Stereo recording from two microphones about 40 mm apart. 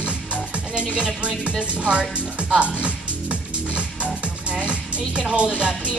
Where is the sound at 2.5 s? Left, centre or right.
Right.